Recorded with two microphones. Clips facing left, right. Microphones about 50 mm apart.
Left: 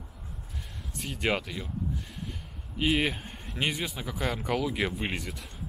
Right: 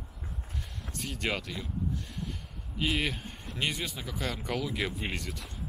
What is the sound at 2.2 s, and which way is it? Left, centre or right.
Gasp, centre.